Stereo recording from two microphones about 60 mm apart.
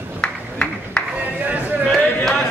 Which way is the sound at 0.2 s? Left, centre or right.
Centre.